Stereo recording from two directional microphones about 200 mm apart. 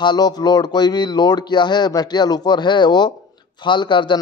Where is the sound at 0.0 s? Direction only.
20° left (ahead or behind).